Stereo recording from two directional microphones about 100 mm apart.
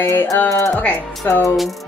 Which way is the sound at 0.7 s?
15° left (ahead or behind).